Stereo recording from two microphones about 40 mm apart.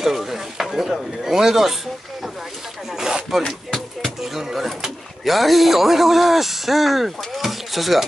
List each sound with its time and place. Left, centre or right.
0.0 s a sound: centre
1.2 s speech: centre
2.9 s rub: centre
3.4 s music: centre
4.2 s a man's voice: centre